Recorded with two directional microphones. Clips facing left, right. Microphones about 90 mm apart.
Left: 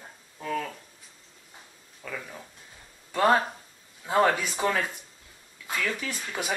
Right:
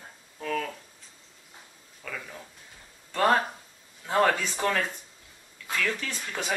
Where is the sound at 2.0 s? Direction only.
10° left (ahead or behind).